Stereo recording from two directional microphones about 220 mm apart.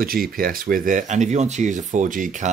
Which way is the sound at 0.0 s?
40° right (ahead or behind).